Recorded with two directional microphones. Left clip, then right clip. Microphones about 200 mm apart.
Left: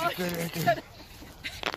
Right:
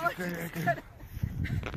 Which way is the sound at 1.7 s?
30° left (ahead or behind).